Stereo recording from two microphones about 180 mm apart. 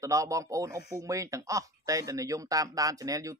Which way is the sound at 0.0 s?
15° right (ahead or behind).